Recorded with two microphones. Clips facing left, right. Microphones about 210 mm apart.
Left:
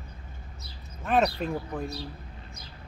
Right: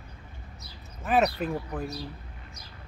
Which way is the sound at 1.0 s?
5° right (ahead or behind).